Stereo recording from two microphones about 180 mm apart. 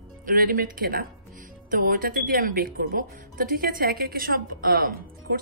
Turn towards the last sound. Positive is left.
turn(degrees=-55)  # may be behind; listen again after turning